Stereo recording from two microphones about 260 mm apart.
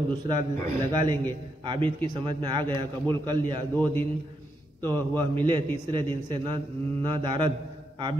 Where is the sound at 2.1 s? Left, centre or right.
Centre.